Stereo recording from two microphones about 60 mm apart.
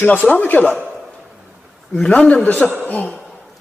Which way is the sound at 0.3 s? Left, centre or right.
Left.